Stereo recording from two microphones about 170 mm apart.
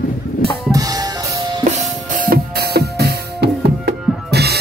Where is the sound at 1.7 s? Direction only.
45° right (ahead or behind); by 4.6 s 70° right (ahead or behind).